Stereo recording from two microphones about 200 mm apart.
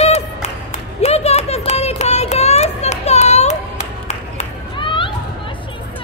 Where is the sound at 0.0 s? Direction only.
35° left (ahead or behind).